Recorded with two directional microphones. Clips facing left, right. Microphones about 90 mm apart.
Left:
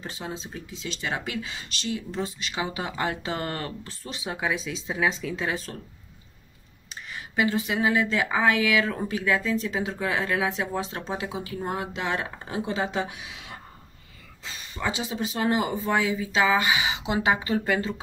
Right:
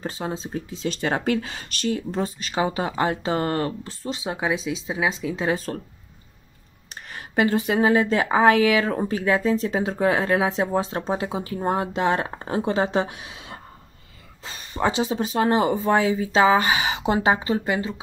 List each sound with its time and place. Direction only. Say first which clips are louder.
0.0 s speech: right 6 dB; 35° right (ahead or behind); by 5.5 s 20° right (ahead or behind)
7.1 s speech: right 4 dB; 45° right (ahead or behind)
14.4 s a sound: right 7 dB; 40° right (ahead or behind)
15.0 s speech: right 5 dB; 45° right (ahead or behind)
17.2 s speech: right 1 dB; 30° right (ahead or behind)
17.6 s speech: right 1 dB; 15° right (ahead or behind)